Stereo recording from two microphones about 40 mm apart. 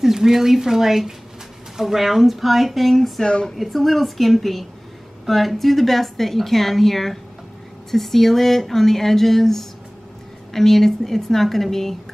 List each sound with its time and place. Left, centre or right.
0.0 s a woman's voice: centre
3.3 s a woman's voice: left
3.5 s a woman's voice: centre